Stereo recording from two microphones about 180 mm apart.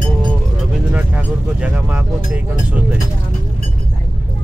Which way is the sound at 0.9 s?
5° right (ahead or behind).